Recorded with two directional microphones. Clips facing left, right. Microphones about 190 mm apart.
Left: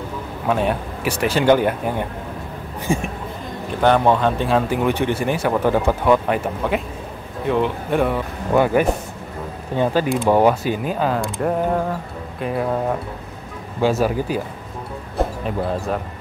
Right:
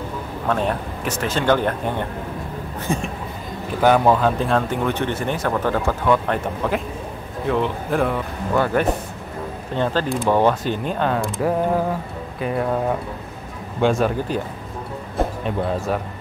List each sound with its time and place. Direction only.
0.5 s speech: 5° left (ahead or behind)
3.8 s speech: 5° right (ahead or behind)
8.5 s speech: 10° left (ahead or behind)
15.4 s speech: centre (ahead or behind)